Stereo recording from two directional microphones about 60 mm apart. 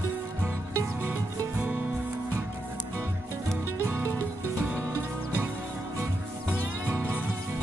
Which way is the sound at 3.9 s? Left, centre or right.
Right.